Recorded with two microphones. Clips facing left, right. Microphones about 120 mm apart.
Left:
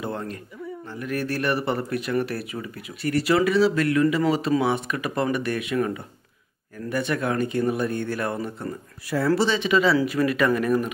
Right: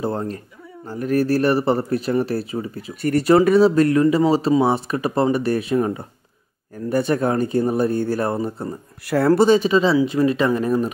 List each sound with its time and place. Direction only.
0.0 s speech: 35° right (ahead or behind)
3.0 s speech: 45° right (ahead or behind)
9.1 s speech: 55° right (ahead or behind)
9.7 s speech: 30° right (ahead or behind)